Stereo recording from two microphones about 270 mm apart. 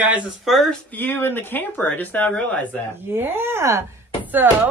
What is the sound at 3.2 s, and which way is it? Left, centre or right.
Speech, centre.